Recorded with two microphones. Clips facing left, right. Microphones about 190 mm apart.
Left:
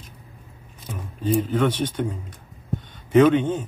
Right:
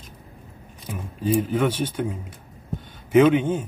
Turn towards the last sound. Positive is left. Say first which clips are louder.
# even
turn(degrees=-10)  # may be behind; listen again after turning